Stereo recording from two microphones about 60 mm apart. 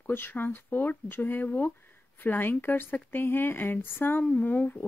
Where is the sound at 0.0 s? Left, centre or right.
Left.